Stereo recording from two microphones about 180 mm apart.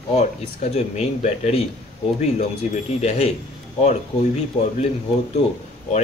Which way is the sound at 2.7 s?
40° left (ahead or behind).